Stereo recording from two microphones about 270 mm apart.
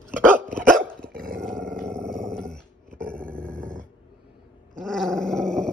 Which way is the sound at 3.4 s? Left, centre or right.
Centre.